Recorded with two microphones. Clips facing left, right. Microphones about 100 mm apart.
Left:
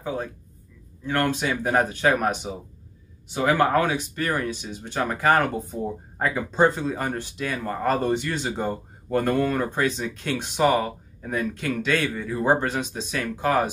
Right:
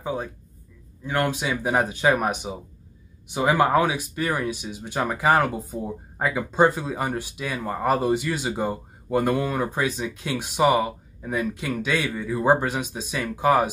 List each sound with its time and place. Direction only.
0.0 s music: 15° right (ahead or behind)
1.0 s speech: 10° right (ahead or behind)